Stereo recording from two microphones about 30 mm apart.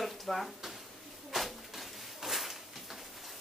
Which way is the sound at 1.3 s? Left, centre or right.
Centre.